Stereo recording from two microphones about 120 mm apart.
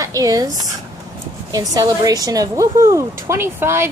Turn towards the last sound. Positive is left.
turn(degrees=-20)  # may be behind; listen again after turning